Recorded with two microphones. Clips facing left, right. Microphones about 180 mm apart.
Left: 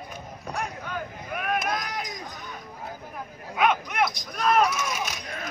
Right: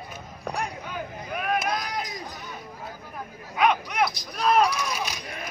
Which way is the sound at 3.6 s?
Centre (ahead or behind).